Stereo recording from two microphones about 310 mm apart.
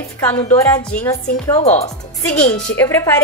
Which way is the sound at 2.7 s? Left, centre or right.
Centre.